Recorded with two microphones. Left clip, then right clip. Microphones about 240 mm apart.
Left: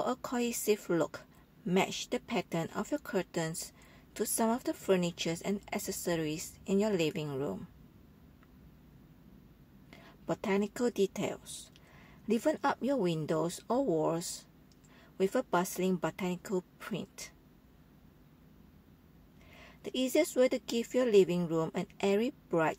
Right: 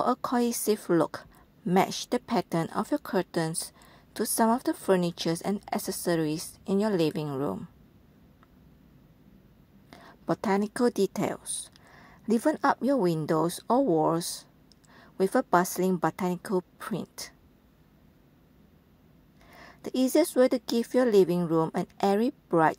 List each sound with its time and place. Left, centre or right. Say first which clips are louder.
0.0 s speech: right 7 dB; centre
9.8 s speech: right 6 dB; centre
19.6 s speech: right 6 dB; right